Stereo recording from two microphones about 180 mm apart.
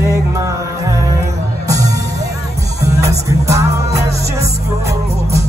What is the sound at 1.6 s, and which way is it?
Music, 20° right (ahead or behind).